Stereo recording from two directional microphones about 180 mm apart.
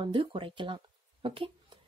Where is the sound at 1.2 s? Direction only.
30° right (ahead or behind).